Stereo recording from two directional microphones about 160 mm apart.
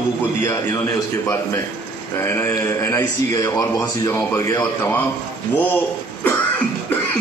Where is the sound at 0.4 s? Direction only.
15° left (ahead or behind).